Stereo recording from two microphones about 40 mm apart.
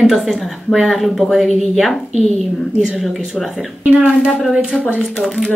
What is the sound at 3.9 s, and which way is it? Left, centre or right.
Speech, centre.